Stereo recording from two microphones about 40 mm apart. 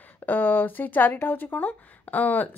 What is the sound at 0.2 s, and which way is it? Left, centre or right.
Speech, left.